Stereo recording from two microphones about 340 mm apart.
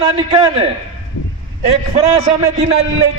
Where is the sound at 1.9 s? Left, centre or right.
Centre.